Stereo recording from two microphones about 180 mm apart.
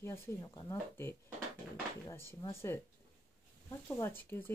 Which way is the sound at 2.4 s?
15° left (ahead or behind).